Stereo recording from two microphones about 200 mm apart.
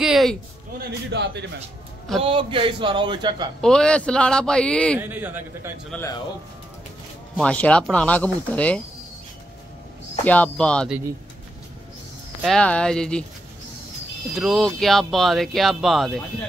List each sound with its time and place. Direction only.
0.0 s a sound: centre (ahead or behind)
1.1 s a man's voice: 60° right (ahead or behind)
2.2 s a man's voice: 25° right (ahead or behind)
3.6 s speech: 5° left (ahead or behind)
4.9 s a man's voice: 10° right (ahead or behind)
5.9 s speech: 5° left (ahead or behind)
7.3 s speech: 5° left (ahead or behind)
10.2 s speech: 5° left (ahead or behind)
12.4 s speech: centre (ahead or behind)
14.3 s speech: centre (ahead or behind)